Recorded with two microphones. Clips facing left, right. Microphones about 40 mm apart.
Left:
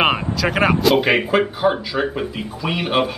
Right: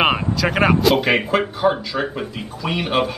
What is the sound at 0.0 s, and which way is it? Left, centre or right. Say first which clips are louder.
A man's voice: even; centre.